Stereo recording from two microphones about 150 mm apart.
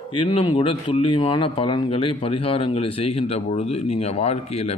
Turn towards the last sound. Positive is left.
turn(degrees=45)  # may be behind; listen again after turning